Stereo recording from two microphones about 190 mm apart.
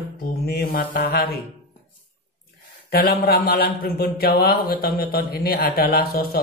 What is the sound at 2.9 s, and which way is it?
Speech, 55° left (ahead or behind).